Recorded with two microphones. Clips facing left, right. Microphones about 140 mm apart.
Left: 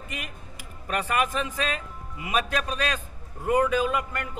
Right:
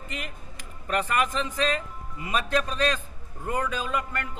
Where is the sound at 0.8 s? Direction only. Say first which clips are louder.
Even; 10° left (ahead or behind).